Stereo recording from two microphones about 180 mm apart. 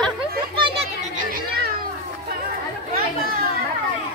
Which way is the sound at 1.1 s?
50° right (ahead or behind).